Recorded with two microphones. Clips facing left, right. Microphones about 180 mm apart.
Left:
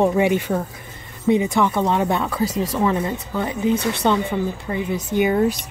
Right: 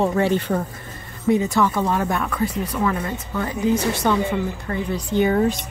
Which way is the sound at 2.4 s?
90° left.